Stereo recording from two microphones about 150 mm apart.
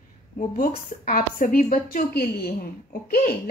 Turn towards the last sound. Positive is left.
turn(degrees=90)